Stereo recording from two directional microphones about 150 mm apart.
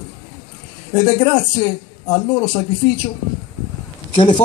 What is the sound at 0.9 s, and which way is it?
Speech, 25° left (ahead or behind).